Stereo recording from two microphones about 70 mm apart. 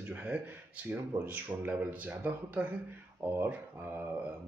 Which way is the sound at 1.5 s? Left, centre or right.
Right.